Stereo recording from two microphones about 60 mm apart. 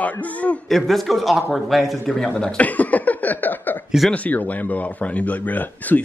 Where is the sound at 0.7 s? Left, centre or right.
Centre.